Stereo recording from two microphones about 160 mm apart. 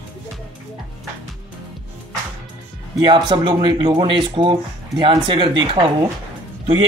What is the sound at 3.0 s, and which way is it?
Speech, 30° right (ahead or behind).